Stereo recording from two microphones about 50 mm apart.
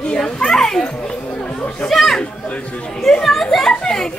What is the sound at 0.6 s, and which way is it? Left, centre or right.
Children playing, centre.